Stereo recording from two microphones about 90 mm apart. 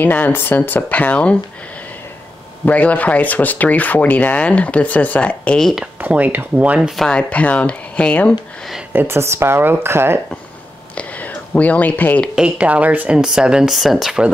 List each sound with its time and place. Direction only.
0.0 s speech: 20° left (ahead or behind)
2.6 s speech: 15° left (ahead or behind)
5.9 s speech: 20° right (ahead or behind)
7.0 s speech: 10° left (ahead or behind)
8.9 s speech: 25° right (ahead or behind)
11.0 s a sound: 15° left (ahead or behind)
12.4 s speech: 15° right (ahead or behind)